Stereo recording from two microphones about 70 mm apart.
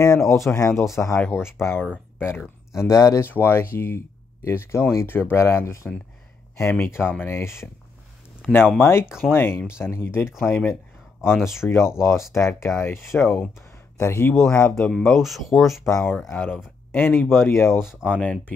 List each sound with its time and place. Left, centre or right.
0.0 s speech: left
2.8 s speech: left
3.3 s speech: left
8.4 s speech: left
14.8 s speech: centre
16.3 s speech: left